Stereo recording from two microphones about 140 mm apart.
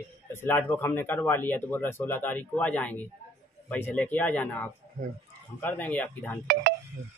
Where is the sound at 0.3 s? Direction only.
15° left (ahead or behind).